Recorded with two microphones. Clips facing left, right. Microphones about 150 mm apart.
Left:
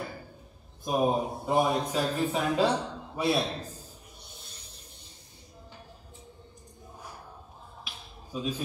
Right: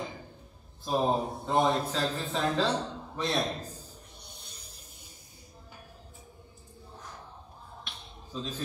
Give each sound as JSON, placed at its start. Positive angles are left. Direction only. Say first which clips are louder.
{"t": 0.8, "sound": "a man's voice", "louder": "left 1 dB", "side_deg": 15}
{"t": 1.3, "sound": "a man's voice", "louder": "left 1 dB", "side_deg": 5}
{"t": 3.3, "sound": "a man's voice", "louder": "left 1 dB", "side_deg": 30}
{"t": 7.8, "sound": "a sound", "louder": "left 1 dB", "side_deg": 5}